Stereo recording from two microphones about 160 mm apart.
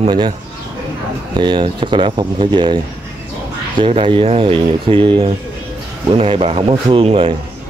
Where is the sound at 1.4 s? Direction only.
30° right (ahead or behind).